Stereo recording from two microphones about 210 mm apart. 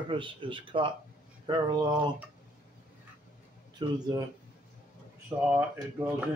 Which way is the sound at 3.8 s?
20° right (ahead or behind).